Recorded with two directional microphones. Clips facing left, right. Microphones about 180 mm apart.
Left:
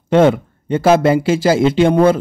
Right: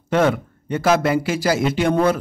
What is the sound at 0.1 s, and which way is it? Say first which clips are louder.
Speech: left 6 dB; 25° left (ahead or behind).